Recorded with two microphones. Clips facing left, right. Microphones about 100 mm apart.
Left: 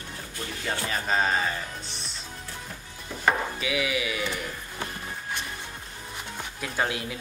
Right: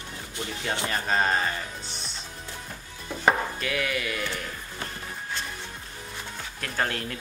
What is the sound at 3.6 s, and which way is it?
Speech, 5° left (ahead or behind).